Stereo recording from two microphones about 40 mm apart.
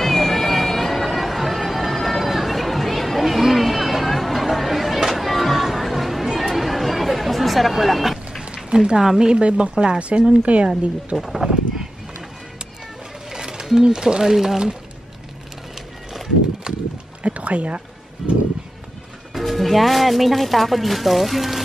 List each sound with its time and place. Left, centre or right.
0.0 s a sound: centre
6.4 s chatter: centre
8.6 s speech: centre
9.3 s a woman's voice: right
11.1 s speech: centre
11.4 s a sound: centre
13.3 s speech: centre
17.2 s music: right
19.3 s speech: centre